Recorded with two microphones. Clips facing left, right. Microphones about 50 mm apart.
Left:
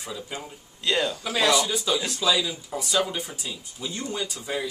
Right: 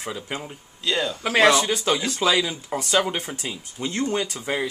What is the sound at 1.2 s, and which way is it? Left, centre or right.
Speech, right.